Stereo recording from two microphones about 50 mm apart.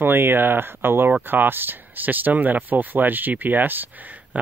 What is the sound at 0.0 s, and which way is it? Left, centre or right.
Speech, right.